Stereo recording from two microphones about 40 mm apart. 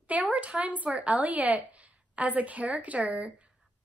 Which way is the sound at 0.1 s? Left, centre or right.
Right.